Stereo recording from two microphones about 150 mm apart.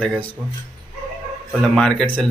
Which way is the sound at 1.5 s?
5° left (ahead or behind).